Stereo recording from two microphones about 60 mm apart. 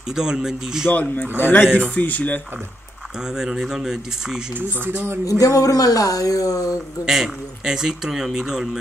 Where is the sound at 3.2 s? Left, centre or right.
Centre.